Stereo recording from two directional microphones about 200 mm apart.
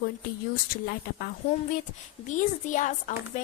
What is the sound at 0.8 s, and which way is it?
Speech, 50° left (ahead or behind).